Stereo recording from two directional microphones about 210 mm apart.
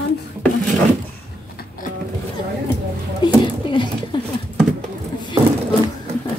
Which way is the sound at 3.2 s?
20° left (ahead or behind).